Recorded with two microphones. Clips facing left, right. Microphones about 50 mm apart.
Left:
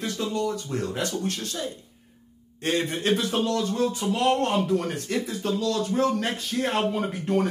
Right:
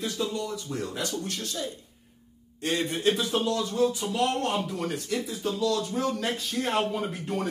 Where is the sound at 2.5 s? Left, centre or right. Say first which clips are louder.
Left 2 dB; left.